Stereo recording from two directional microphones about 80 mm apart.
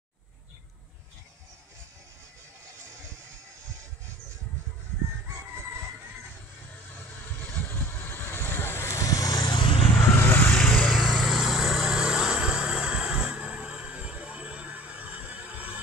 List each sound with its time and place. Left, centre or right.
7.4 s vehicle: left
9.4 s vehicle: left
9.9 s vehicle: left
10.4 s vehicle: centre